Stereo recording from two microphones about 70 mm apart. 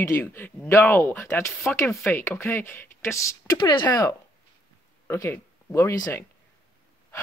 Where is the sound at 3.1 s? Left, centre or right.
Left.